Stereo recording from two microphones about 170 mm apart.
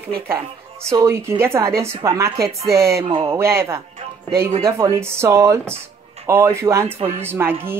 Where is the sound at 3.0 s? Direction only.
30° right (ahead or behind).